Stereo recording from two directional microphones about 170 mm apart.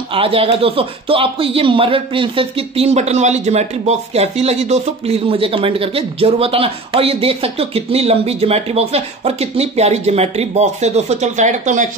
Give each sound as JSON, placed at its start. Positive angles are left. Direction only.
{"t": 0.1, "sound": "speech", "side_deg": -35}